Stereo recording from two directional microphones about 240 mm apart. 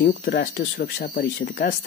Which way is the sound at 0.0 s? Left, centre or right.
Left.